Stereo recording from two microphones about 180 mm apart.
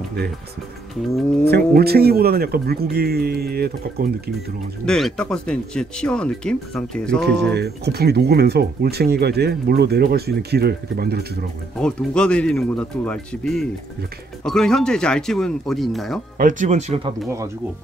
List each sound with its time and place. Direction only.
1.8 s speech: 60° right (ahead or behind)
4.8 s speech: 5° left (ahead or behind)
7.5 s speech: 65° right (ahead or behind)
11.8 s speech: 5° left (ahead or behind)
16.3 s speech: 45° right (ahead or behind)